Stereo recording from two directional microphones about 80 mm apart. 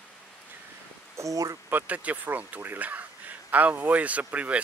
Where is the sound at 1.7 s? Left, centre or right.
Centre.